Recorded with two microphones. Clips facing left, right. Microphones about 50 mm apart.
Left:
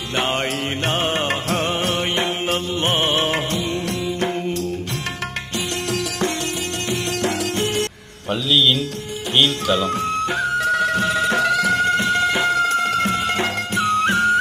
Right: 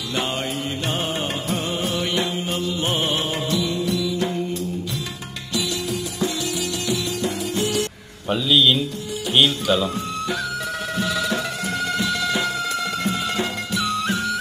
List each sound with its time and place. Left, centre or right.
2.8 s music: centre
8.3 s speech: centre
10.6 s music: left
11.1 s music: left
11.4 s music: left
11.7 s music: left